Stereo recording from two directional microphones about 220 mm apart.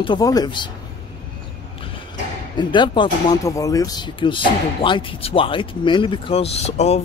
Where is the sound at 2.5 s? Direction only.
20° left (ahead or behind).